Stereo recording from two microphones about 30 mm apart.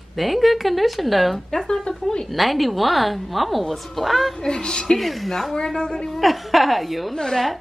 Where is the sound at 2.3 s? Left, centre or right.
Centre.